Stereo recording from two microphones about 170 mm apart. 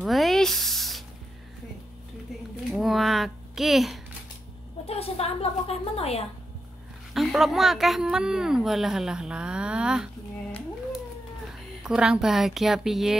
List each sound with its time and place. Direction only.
0.0 s spray: centre (ahead or behind)
2.7 s a sound: centre (ahead or behind)
4.8 s a woman's voice: 35° left (ahead or behind)
7.2 s a woman's voice: centre (ahead or behind)
11.8 s a woman's voice: 5° right (ahead or behind)